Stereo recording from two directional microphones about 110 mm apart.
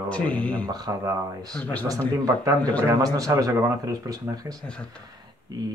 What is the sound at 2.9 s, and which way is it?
Speech, 35° right (ahead or behind).